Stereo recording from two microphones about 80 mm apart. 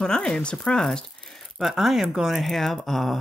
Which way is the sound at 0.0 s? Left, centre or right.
Centre.